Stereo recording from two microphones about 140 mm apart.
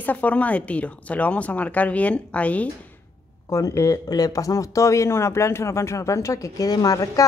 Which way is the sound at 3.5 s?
25° left (ahead or behind).